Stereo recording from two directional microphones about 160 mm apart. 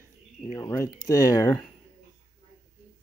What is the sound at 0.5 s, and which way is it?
Speech, 15° left (ahead or behind).